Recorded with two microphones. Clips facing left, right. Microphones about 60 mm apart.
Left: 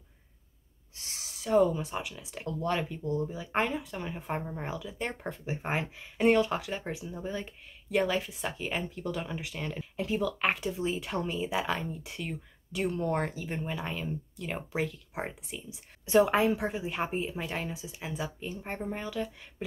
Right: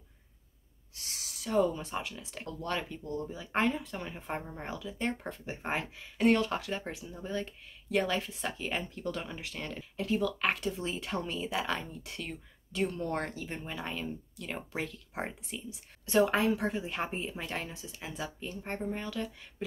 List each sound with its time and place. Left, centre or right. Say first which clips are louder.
0.9 s a sound: even; left
1.5 s speech: left 4 dB; centre
3.0 s speech: left 5 dB; left
3.3 s speech: even; centre
13.2 s speech: left 4 dB; centre